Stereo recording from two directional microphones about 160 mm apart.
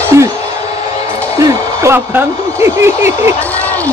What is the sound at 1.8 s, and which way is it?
Speech, 15° right (ahead or behind).